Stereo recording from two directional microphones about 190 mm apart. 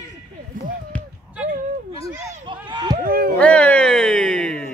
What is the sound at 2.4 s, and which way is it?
Run, 25° right (ahead or behind).